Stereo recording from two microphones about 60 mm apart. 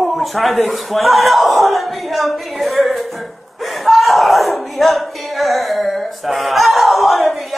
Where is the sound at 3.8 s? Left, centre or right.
Centre.